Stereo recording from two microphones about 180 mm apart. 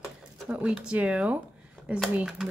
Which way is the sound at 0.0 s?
5° right (ahead or behind).